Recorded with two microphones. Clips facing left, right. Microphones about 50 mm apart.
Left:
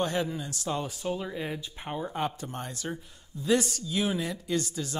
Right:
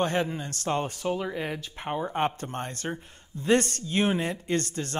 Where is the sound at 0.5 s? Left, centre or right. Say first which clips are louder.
Right 4 dB; right.